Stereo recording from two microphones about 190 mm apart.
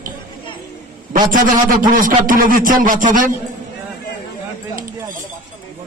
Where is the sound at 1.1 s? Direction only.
45° right (ahead or behind).